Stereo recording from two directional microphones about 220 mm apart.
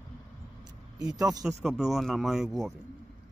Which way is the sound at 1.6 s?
Centre (ahead or behind).